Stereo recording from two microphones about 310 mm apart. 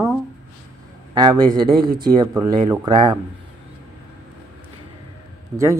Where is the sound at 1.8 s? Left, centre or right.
Right.